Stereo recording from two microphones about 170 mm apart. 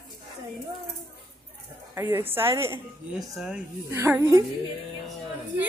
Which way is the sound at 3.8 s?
15° right (ahead or behind).